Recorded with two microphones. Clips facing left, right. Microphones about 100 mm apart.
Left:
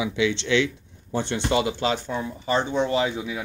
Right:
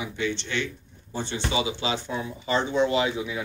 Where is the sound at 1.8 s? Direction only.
50° left (ahead or behind); by 3.3 s 35° left (ahead or behind).